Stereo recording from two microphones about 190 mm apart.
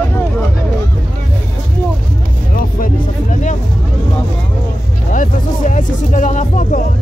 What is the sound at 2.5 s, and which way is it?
Music, 45° left (ahead or behind).